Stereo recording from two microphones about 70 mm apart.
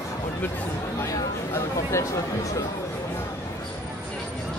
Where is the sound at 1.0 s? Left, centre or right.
Left.